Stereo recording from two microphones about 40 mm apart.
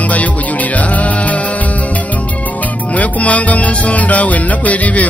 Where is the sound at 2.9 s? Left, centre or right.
Left.